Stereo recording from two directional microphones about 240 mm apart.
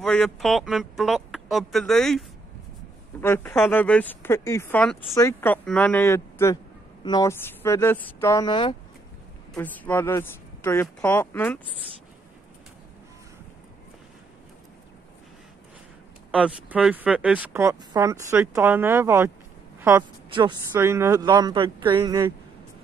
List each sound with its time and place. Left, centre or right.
0.0 s speech: centre
9.6 s speech: centre
16.3 s a woman's voice: centre
20.2 s speech: right